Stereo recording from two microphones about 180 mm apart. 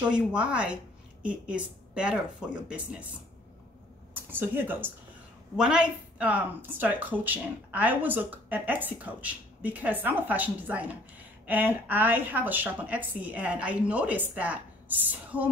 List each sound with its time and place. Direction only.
0.0 s speech: 5° right (ahead or behind)
4.1 s speech: 10° right (ahead or behind)